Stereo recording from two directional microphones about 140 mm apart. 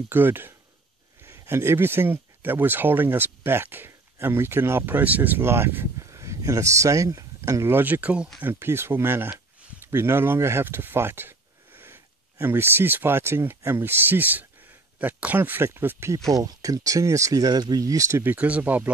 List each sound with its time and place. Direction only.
0.1 s speech: 15° right (ahead or behind)